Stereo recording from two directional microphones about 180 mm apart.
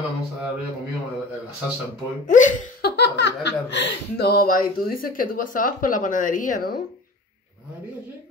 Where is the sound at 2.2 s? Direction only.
45° left (ahead or behind).